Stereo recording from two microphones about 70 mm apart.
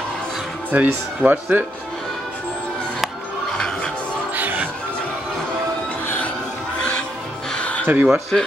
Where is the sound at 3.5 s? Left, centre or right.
Centre.